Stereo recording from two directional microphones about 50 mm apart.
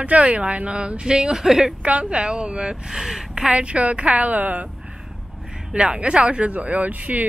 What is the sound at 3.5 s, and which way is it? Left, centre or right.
A woman's voice, right.